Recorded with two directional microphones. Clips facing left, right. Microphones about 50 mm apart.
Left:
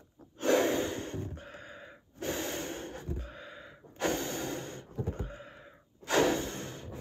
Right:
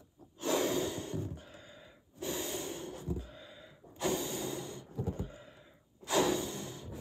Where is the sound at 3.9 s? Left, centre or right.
Left.